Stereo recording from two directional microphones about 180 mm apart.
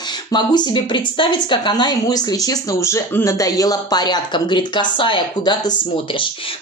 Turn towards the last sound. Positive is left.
turn(degrees=25)  # may be behind; listen again after turning